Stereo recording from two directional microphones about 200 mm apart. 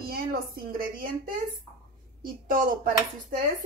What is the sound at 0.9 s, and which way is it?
Speech, 45° right (ahead or behind).